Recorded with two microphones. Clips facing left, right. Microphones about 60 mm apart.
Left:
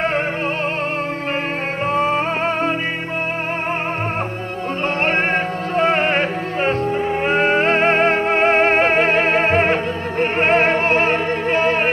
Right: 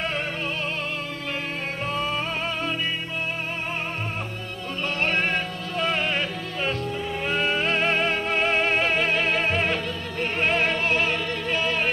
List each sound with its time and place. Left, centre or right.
1.9 s music: left
5.0 s music: left